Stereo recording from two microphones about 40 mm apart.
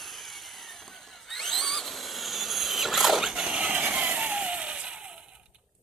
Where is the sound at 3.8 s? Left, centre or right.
Right.